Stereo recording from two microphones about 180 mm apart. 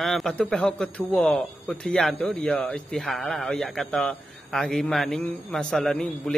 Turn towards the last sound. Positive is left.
turn(degrees=0)  # may be behind; listen again after turning